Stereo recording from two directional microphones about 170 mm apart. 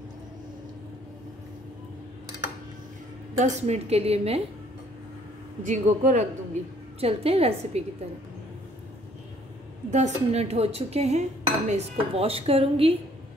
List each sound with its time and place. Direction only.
3.3 s dishes: 45° right (ahead or behind)
5.7 s speech: 45° right (ahead or behind)
7.0 s dishes: 35° right (ahead or behind)
9.8 s dishes: 45° right (ahead or behind)